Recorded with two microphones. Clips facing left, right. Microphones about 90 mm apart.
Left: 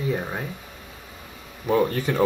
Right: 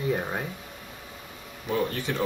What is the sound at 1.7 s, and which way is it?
Speech, 50° left (ahead or behind).